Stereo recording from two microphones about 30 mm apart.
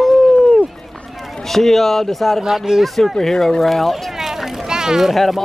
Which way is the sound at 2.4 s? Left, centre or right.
Right.